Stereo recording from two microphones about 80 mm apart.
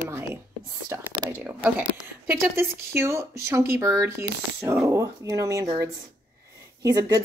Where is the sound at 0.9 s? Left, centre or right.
Right.